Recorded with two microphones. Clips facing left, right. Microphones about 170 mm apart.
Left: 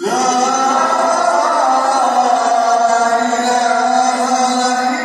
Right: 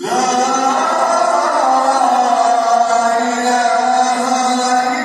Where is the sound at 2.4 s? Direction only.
Centre (ahead or behind).